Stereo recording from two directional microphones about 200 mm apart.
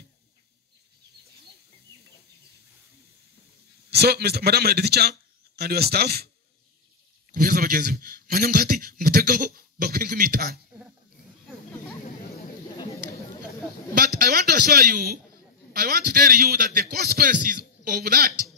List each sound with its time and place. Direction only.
3.9 s a man's voice: 55° right (ahead or behind)
7.3 s a man's voice: 45° right (ahead or behind)
12.7 s a sound: 20° left (ahead or behind)
14.1 s a man's voice: 50° right (ahead or behind)